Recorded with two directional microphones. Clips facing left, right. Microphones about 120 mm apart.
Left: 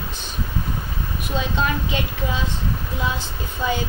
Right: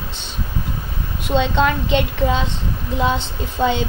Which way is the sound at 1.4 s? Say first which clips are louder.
Right 6 dB; 90° right.